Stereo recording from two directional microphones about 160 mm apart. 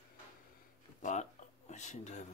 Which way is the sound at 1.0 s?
45° left (ahead or behind).